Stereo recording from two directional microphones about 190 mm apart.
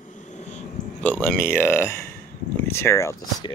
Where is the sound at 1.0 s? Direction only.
5° left (ahead or behind).